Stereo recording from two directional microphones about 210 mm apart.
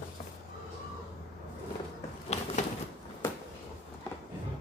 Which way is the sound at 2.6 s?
35° left (ahead or behind).